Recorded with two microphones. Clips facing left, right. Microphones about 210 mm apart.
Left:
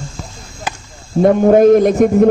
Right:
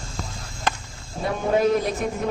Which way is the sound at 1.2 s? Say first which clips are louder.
Left 13 dB; 55° left (ahead or behind).